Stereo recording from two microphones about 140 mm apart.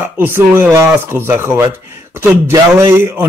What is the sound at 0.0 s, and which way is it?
A man's voice, 15° right (ahead or behind).